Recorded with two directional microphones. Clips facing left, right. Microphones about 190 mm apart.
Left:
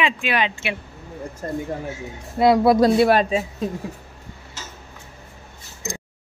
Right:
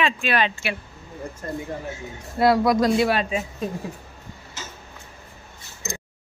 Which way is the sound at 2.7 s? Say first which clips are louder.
Left 4 dB; 35° left (ahead or behind).